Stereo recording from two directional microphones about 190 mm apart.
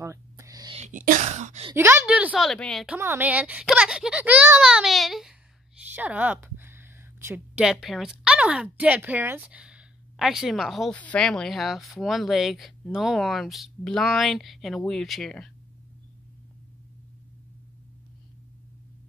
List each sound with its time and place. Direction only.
0.0 s a sound: 15° right (ahead or behind)
0.7 s speech: 40° right (ahead or behind)
1.8 s a child's voice: 10° right (ahead or behind)
3.0 s a child's voice: 10° right (ahead or behind)